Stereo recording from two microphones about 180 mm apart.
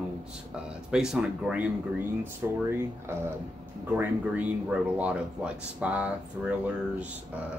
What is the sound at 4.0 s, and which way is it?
Speech, 10° right (ahead or behind).